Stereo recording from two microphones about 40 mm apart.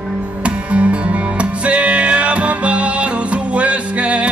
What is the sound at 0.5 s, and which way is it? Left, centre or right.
Music, right.